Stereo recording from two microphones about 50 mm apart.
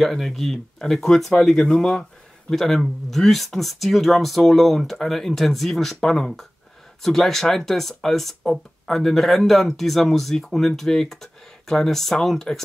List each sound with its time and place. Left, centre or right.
0.0 s speech: centre